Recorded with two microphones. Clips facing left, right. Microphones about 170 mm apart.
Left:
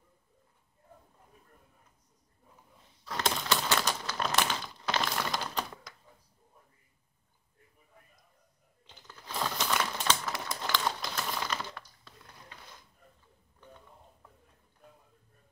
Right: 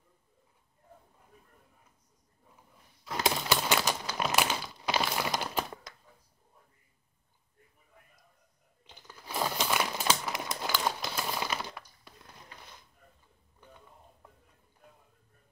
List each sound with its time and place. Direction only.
3.3 s crumpling: 10° right (ahead or behind)
9.0 s crumpling: 10° right (ahead or behind)